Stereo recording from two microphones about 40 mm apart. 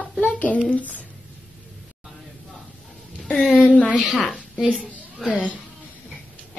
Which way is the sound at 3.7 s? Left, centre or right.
Left.